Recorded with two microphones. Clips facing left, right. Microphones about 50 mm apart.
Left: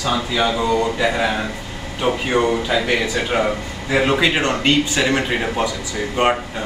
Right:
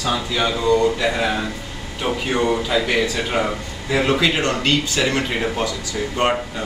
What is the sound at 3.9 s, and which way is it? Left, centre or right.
Speech, centre.